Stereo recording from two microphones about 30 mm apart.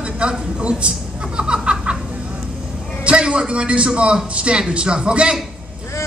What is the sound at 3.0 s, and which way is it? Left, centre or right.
A man's voice, right.